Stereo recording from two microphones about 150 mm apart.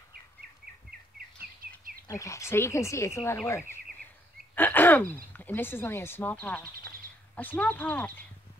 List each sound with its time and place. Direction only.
1.1 s bird: 75° right (ahead or behind)
2.0 s speech: 20° left (ahead or behind)